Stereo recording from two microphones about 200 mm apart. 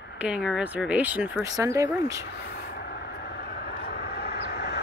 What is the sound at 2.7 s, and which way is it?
Vehicle, 50° left (ahead or behind).